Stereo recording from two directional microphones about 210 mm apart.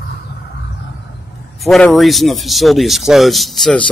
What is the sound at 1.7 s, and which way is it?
Speech, centre (ahead or behind).